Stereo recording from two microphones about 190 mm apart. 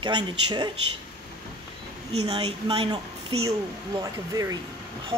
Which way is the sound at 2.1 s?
30° right (ahead or behind).